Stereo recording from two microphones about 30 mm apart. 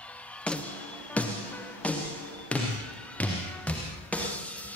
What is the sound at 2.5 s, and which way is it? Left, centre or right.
Basketball bounce, left.